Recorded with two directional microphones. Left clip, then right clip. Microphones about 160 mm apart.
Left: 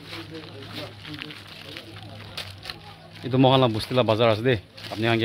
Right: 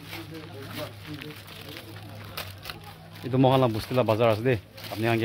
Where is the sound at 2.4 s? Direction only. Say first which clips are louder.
Left 2 dB; 30° right (ahead or behind).